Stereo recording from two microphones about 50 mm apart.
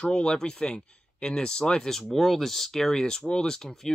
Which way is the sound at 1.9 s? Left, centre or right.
Centre.